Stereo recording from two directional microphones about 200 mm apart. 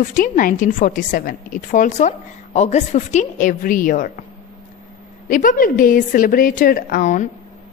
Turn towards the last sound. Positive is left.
turn(degrees=40)  # may be behind; listen again after turning